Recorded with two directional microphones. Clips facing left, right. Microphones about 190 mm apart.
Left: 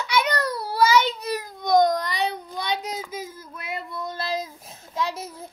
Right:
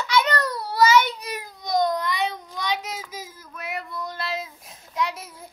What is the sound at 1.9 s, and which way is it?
Child singing, 35° left (ahead or behind).